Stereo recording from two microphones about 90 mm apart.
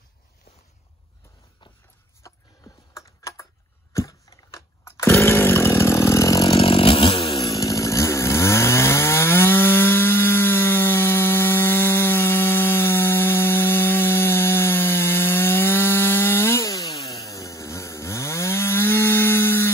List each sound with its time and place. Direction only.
2.2 s a sound: 35° left (ahead or behind)
2.9 s typing: 35° left (ahead or behind)
3.9 s chainsaw: 35° left (ahead or behind)
6.5 s chainsaw: 85° left
7.4 s chainsaw: 40° left (ahead or behind)